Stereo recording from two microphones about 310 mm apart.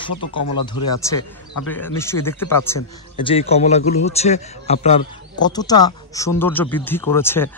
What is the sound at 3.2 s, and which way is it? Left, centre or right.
A man's voice, centre.